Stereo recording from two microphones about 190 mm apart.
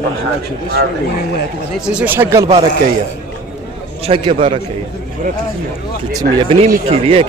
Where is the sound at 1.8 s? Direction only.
5° right (ahead or behind).